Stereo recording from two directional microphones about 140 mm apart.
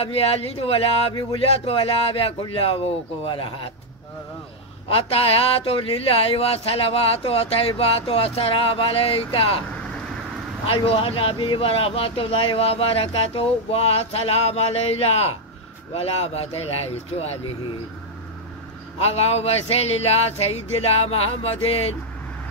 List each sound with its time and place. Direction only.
0.0 s speech: 45° left (ahead or behind)
4.8 s speech: 45° left (ahead or behind)
10.7 s speech: 45° left (ahead or behind)
18.9 s speech: 50° left (ahead or behind)